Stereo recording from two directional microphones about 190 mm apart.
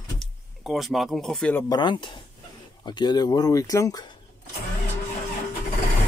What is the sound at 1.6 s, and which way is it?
Speech, 25° left (ahead or behind).